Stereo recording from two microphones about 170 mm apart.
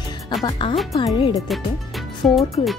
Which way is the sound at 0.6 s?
25° left (ahead or behind).